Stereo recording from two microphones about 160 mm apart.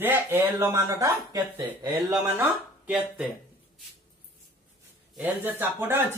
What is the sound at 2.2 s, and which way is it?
Speech, 10° right (ahead or behind).